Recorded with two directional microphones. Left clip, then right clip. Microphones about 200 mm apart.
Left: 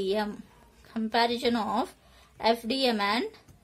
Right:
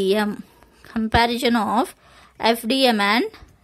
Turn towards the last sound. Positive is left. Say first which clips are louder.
# right 8 dB
turn(degrees=-35)  # may be behind; listen again after turning